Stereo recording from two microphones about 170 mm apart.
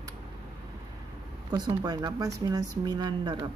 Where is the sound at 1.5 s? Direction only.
25° right (ahead or behind).